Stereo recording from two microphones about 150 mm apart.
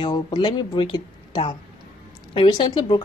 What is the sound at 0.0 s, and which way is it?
A woman's voice, 30° left (ahead or behind).